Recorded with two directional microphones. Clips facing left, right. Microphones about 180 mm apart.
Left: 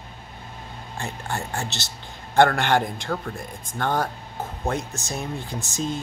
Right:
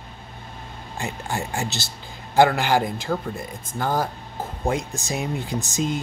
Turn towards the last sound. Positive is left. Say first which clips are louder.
# right 4 dB
turn(degrees=-20)  # may be behind; listen again after turning